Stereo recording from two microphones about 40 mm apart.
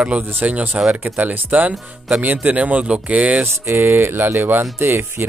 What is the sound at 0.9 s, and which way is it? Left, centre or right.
Speech, right.